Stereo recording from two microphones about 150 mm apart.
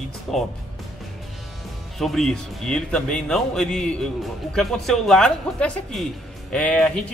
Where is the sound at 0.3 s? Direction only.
Centre (ahead or behind).